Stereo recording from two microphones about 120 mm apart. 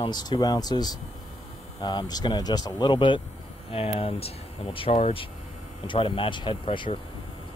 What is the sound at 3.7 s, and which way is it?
Speech, 55° left (ahead or behind).